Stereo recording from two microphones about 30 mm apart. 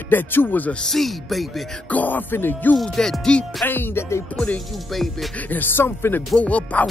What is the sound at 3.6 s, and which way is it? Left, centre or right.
Music, left.